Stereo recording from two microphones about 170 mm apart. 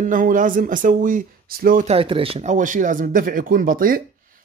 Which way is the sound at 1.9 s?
35° right (ahead or behind).